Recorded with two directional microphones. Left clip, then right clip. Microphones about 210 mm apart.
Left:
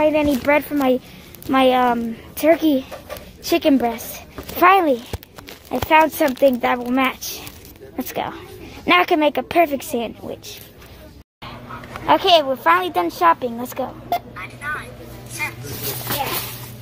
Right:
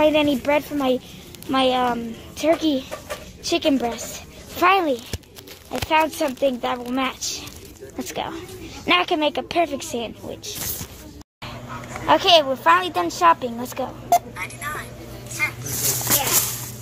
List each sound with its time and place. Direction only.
0.0 s speech: 10° left (ahead or behind)
0.5 s a woman's voice: 20° left (ahead or behind)
12.1 s a woman's voice: 20° left (ahead or behind)
16.2 s a sound: 10° left (ahead or behind)